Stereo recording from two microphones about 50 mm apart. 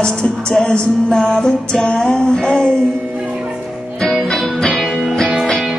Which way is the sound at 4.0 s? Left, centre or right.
Centre.